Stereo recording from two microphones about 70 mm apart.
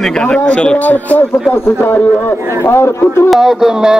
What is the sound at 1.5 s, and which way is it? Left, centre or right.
A man's voice, left.